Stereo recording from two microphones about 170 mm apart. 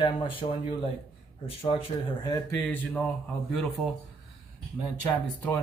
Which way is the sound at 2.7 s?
10° left (ahead or behind).